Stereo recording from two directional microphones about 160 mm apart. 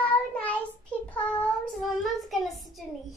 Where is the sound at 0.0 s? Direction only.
10° left (ahead or behind).